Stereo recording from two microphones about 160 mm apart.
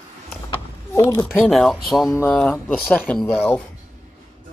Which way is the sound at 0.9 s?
15° left (ahead or behind).